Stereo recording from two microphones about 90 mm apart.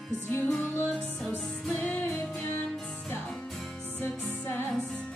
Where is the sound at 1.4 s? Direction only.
10° left (ahead or behind).